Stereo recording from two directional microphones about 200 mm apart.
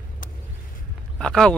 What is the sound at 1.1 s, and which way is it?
Speech, 5° left (ahead or behind).